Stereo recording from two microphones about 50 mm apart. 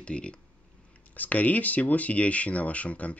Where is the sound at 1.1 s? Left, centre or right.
Left.